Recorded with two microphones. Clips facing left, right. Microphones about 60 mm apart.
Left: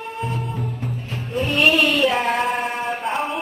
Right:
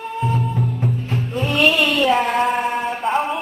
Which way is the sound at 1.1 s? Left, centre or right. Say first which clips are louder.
Right 2 dB; right.